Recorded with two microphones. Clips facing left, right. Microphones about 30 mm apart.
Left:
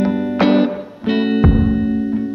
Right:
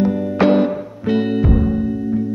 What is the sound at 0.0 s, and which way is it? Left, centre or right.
Music, left.